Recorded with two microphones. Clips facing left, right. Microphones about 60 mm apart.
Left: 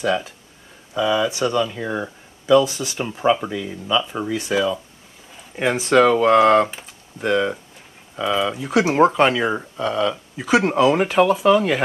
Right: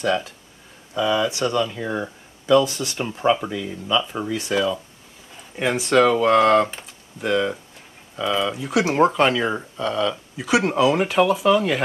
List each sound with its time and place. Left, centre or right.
0.0 s speech: centre